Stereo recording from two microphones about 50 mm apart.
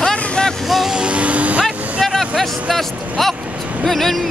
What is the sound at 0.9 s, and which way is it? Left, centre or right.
Music, right.